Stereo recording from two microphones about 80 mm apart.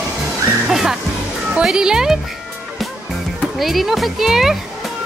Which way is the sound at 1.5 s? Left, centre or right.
Centre.